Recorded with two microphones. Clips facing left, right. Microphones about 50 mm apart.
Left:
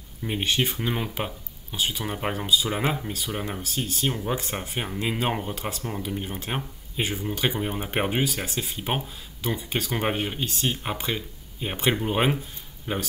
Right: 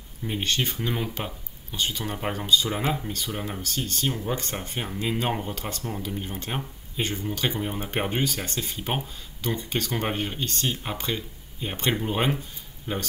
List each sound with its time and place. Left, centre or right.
0.2 s speech: centre